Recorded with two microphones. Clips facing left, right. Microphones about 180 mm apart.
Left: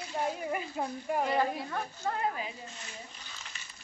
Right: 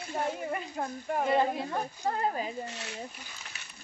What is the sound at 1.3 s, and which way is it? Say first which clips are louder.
Speech: right 3 dB; 20° right (ahead or behind).